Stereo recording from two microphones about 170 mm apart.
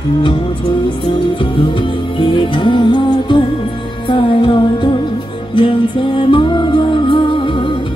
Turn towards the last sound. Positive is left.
turn(degrees=30)  # may be behind; listen again after turning